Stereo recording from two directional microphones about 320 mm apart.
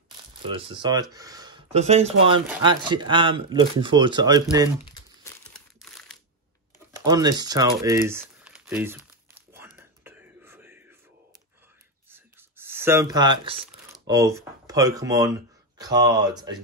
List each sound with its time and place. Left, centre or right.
0.5 s speech: centre
5.8 s crumpling: centre
6.9 s speech: centre
8.2 s crumpling: centre
12.1 s a sound: centre
14.0 s speech: centre